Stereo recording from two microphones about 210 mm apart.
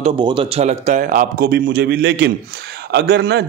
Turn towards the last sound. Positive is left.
turn(degrees=-55)  # may be behind; listen again after turning